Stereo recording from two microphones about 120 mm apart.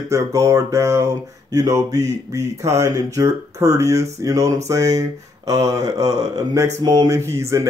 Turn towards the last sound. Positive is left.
turn(degrees=-25)  # may be behind; listen again after turning